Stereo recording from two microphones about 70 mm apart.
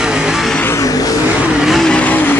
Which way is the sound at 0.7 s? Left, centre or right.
Left.